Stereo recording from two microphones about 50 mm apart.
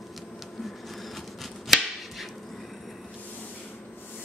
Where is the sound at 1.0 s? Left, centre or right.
Centre.